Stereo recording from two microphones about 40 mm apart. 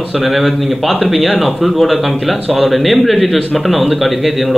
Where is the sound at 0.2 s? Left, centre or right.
Centre.